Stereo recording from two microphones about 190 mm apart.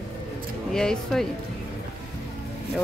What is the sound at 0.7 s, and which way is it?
Speech, 5° left (ahead or behind).